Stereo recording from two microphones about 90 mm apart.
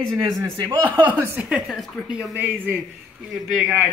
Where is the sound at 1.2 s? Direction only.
20° right (ahead or behind).